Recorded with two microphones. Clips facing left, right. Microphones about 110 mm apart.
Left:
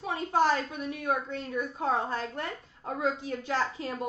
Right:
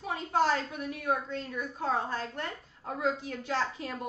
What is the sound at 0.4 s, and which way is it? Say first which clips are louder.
A woman's voice: left 2 dB; 20° left (ahead or behind).